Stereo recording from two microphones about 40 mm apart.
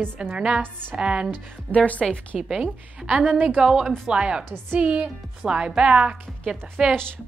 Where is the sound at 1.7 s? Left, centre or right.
Left.